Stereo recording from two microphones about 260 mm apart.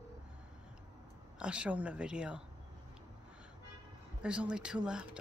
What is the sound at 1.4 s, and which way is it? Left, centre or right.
Speech, centre.